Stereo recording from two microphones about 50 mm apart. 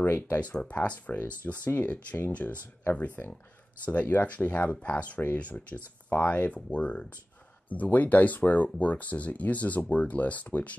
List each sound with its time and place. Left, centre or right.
0.0 s speech: left
0.4 s speech: left
3.2 s speech: left
3.8 s speech: left